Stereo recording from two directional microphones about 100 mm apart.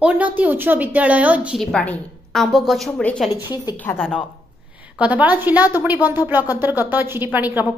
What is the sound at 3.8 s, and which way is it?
Speech, 15° left (ahead or behind).